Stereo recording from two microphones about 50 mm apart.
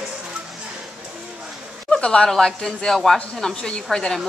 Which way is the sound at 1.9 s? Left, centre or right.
Centre.